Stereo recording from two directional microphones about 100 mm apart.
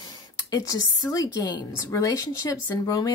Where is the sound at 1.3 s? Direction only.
40° left (ahead or behind).